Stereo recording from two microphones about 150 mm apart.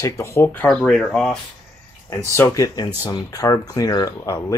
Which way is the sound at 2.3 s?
20° left (ahead or behind).